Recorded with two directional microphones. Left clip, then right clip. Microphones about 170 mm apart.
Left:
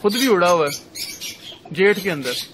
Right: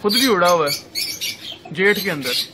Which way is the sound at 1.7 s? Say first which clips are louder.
Even; 35° left (ahead or behind).